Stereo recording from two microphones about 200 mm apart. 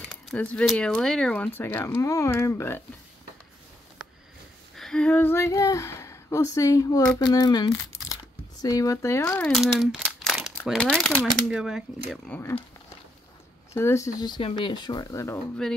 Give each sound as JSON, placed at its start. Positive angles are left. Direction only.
{"t": 0.1, "sound": "speech", "side_deg": 5}
{"t": 4.7, "sound": "speech", "side_deg": 5}
{"t": 12.1, "sound": "speech", "side_deg": 10}
{"t": 13.7, "sound": "speech", "side_deg": 15}